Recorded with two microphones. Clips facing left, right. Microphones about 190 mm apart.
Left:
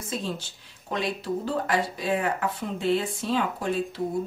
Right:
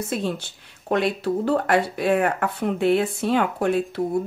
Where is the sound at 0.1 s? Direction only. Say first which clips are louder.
Right 1 dB; 65° right (ahead or behind).